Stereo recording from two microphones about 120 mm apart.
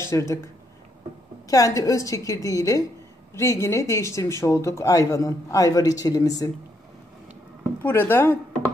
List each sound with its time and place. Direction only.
0.0 s speech: 25° left (ahead or behind)
1.5 s speech: 30° left (ahead or behind)
7.8 s speech: 15° left (ahead or behind)